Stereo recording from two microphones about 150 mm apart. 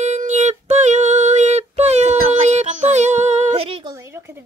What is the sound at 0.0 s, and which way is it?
Female singing, 50° right (ahead or behind).